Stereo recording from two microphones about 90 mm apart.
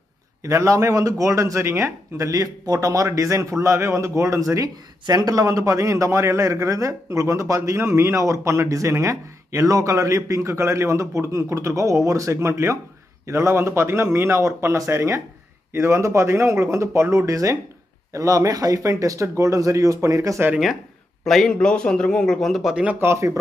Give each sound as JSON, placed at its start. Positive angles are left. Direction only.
{"t": 0.4, "sound": "speech", "side_deg": -35}
{"t": 21.2, "sound": "a man's voice", "side_deg": 5}
{"t": 22.8, "sound": "speech", "side_deg": -25}